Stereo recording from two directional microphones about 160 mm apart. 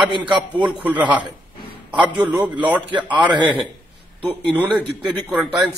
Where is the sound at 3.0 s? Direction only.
30° right (ahead or behind).